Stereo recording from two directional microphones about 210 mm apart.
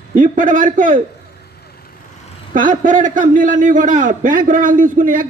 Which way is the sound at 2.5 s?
40° right (ahead or behind).